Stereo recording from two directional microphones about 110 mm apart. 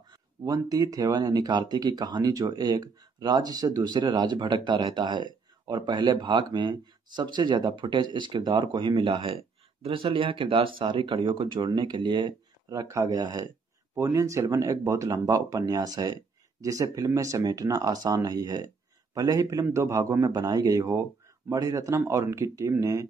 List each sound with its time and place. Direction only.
0.5 s a man's voice: 35° right (ahead or behind)